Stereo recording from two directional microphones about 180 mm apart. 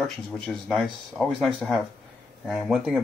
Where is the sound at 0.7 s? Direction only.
Centre (ahead or behind).